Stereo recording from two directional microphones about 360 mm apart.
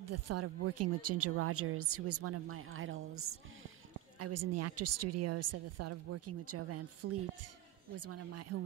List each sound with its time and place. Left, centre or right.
0.0 s speech: right